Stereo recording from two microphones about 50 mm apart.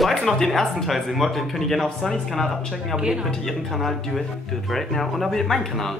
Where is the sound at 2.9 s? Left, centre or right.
Centre.